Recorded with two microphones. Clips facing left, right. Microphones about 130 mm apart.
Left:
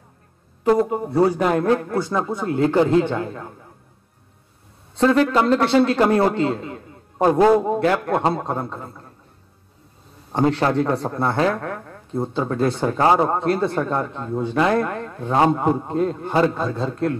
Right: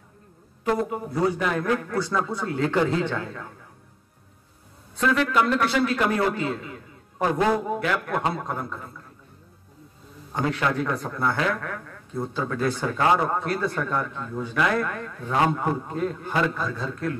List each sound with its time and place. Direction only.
0.7 s speech: 35° left (ahead or behind)
4.9 s a man's voice: 35° left (ahead or behind)
10.3 s speech: 35° left (ahead or behind)